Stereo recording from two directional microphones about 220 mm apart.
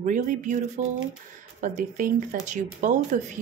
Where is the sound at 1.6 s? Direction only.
35° right (ahead or behind).